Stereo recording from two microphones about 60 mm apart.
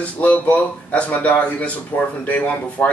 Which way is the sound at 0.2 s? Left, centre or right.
Left.